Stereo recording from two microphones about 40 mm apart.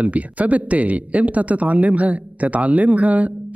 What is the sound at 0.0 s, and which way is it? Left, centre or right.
Speech, right.